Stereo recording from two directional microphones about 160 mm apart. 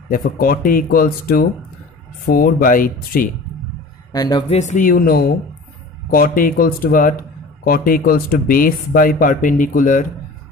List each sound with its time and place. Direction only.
0.1 s speech: 65° left (ahead or behind)
4.1 s speech: 25° left (ahead or behind)
4.5 s speech: 45° left (ahead or behind)